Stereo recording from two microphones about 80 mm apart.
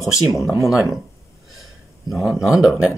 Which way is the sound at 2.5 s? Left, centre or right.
Centre.